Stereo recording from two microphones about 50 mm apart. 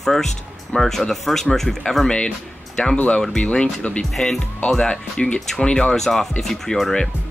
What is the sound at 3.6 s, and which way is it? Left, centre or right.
Speech, left.